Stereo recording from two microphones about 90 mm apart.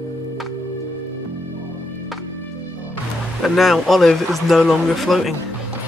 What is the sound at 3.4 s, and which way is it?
Speech, centre (ahead or behind).